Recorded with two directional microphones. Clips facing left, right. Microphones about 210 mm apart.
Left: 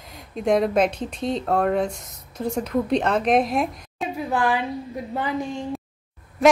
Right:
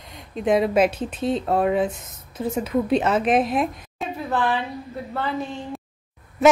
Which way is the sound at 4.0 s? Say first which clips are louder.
Left 1 dB; 10° left (ahead or behind).